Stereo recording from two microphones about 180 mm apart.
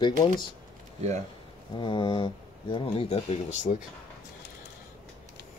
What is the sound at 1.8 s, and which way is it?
Speech, 25° left (ahead or behind).